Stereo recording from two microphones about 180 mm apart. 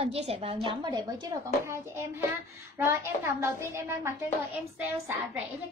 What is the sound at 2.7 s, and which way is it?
A child's voice, 15° right (ahead or behind).